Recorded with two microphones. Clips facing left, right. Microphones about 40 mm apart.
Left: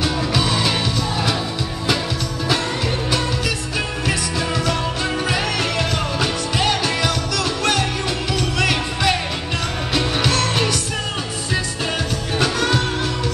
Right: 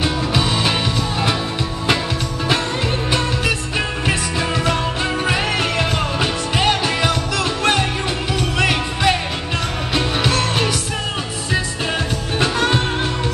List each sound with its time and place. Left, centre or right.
0.0 s music: right
3.1 s music: right
8.5 s music: centre
12.4 s music: right